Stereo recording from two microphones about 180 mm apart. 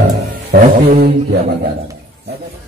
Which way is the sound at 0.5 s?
60° right (ahead or behind).